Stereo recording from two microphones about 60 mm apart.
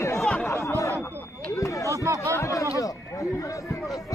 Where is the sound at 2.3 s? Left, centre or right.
Left.